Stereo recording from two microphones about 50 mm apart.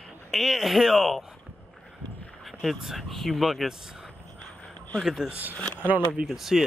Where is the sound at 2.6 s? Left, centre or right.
Centre.